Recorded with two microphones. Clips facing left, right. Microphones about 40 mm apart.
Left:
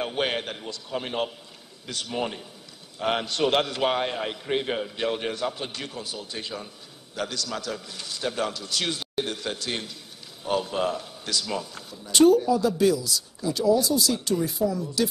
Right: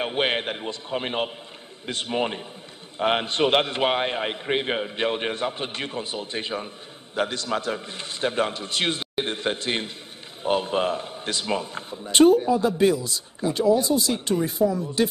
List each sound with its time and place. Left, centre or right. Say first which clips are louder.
0.0 s a man's voice: right 3 dB; right